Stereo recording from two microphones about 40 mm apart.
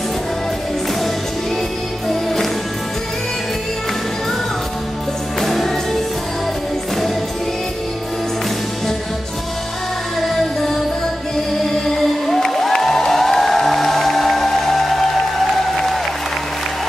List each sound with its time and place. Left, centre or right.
2.0 s music: centre
5.4 s music: centre
10.2 s music: centre